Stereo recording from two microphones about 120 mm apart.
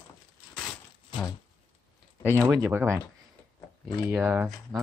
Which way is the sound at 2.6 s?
20° right (ahead or behind).